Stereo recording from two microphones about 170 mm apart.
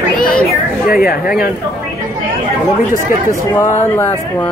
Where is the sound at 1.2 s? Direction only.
5° right (ahead or behind).